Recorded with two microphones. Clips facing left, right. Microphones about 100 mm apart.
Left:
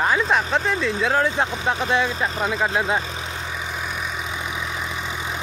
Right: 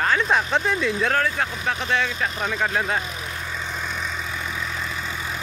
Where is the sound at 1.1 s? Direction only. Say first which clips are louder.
Left 2 dB; 20° left (ahead or behind).